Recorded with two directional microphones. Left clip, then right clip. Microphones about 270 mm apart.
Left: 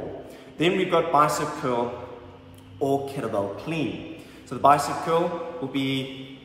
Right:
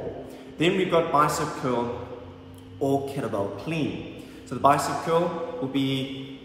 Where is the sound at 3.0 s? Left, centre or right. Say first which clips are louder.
Left 1 dB; centre.